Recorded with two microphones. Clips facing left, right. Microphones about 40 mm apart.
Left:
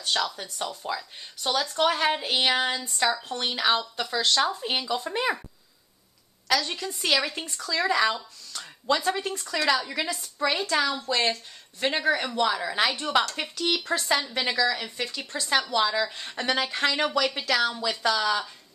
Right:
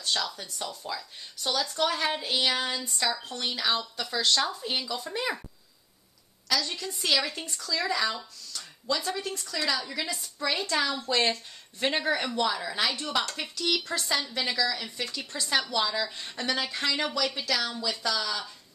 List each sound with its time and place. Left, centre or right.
0.0 s speech: left
4.2 s speech: centre
4.5 s speech: left
6.4 s a woman's voice: left
7.6 s speech: left
10.4 s speech: centre
12.4 s speech: centre
15.3 s speech: centre